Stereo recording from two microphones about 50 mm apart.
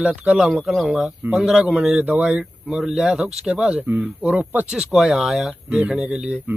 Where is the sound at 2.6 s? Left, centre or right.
Centre.